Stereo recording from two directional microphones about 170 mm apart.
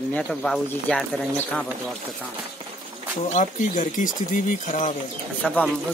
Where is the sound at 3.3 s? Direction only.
45° left (ahead or behind).